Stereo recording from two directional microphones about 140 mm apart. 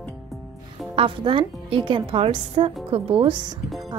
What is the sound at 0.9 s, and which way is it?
A woman's voice, 40° right (ahead or behind).